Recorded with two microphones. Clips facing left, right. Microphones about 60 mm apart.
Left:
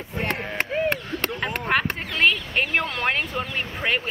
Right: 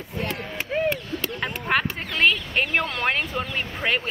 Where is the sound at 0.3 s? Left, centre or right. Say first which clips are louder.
Left 4 dB; left.